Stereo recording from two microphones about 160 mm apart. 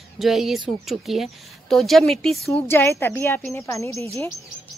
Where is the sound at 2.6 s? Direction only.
15° left (ahead or behind).